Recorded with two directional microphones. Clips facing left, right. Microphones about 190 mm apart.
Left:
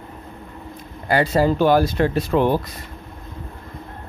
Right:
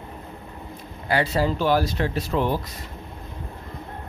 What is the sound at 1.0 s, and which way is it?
Speech, 45° left (ahead or behind).